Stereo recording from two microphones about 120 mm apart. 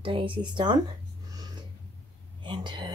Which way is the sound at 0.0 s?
45° right (ahead or behind).